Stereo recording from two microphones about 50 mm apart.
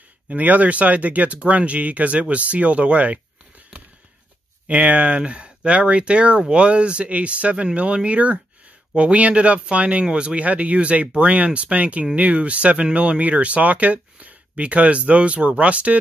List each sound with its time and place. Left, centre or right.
0.3 s speech: right
3.7 s a sound: centre
4.6 s speech: right